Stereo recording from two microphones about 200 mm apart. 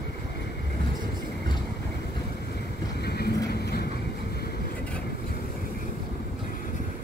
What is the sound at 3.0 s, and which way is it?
Vehicle, 50° left (ahead or behind).